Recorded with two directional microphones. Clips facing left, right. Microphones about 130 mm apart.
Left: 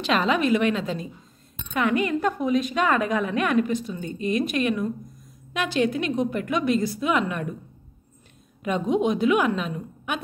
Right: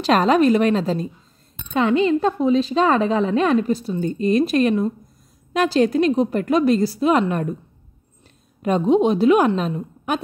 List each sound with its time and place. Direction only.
0.0 s a woman's voice: 40° right (ahead or behind)
8.6 s a woman's voice: 35° right (ahead or behind)